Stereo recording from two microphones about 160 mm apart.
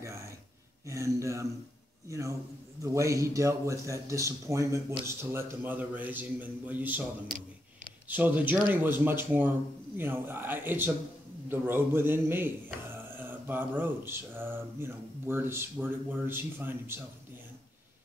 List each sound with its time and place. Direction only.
0.8 s a man's voice: 20° right (ahead or behind)
8.1 s speech: 10° right (ahead or behind)